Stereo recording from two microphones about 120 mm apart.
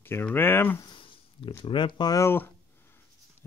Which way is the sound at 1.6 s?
45° left (ahead or behind).